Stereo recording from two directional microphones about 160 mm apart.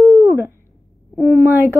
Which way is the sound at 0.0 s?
20° right (ahead or behind).